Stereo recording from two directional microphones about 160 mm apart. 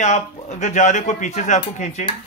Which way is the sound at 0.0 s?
50° left (ahead or behind).